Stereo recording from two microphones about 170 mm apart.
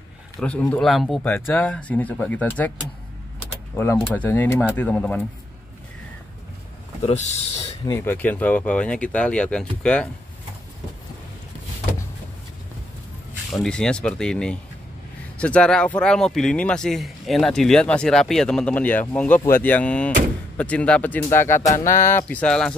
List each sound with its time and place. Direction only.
0.4 s speech: 5° left (ahead or behind)
3.7 s speech: 15° left (ahead or behind)
7.0 s speech: 40° left (ahead or behind)
7.8 s speech: 15° left (ahead or behind)
13.5 s speech: 5° left (ahead or behind)